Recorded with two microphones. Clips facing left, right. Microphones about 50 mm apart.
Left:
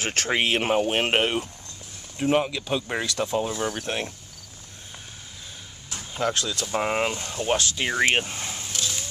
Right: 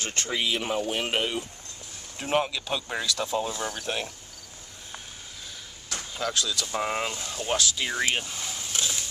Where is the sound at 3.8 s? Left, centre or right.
Left.